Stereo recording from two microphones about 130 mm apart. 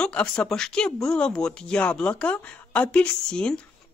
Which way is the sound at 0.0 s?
5° left (ahead or behind).